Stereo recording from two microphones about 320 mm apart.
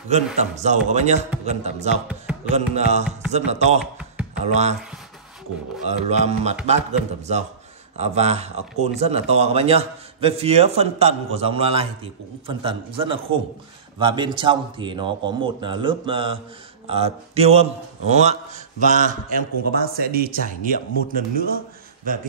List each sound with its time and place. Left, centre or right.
0.1 s speech: right
2.0 s music: centre
2.5 s speech: right
3.8 s a sound: centre
5.9 s speech: right
8.0 s a man's voice: centre